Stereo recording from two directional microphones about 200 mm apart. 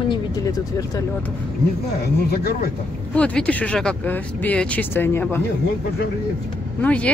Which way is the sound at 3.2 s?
5° left (ahead or behind).